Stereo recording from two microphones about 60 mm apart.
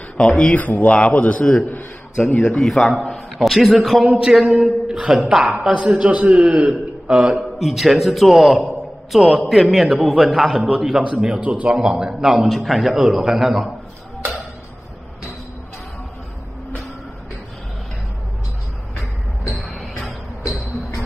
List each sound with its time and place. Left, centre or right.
0.2 s speech: centre
0.6 s a man's voice: left
2.2 s a man's voice: centre
2.6 s a man's voice: centre
19.4 s music: centre